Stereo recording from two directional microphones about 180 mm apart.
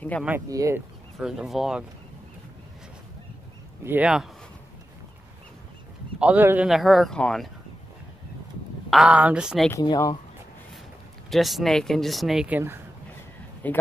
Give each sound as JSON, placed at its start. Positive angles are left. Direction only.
{"t": 0.5, "sound": "speech", "side_deg": -15}
{"t": 1.2, "sound": "speech", "side_deg": -5}
{"t": 3.8, "sound": "speech", "side_deg": -10}
{"t": 6.1, "sound": "speech", "side_deg": -10}
{"t": 8.9, "sound": "speech", "side_deg": -5}
{"t": 9.7, "sound": "speech", "side_deg": 20}
{"t": 11.2, "sound": "speech", "side_deg": 0}
{"t": 13.6, "sound": "speech", "side_deg": 10}